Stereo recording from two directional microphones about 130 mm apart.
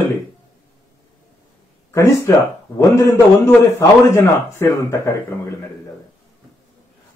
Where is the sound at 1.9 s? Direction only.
25° left (ahead or behind).